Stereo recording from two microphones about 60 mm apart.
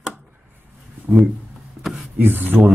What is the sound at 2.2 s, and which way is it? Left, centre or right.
Speech, right.